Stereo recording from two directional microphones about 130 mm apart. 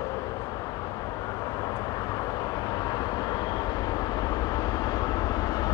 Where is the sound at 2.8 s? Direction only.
30° left (ahead or behind).